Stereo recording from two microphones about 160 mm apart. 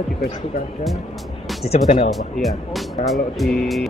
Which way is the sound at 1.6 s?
40° left (ahead or behind).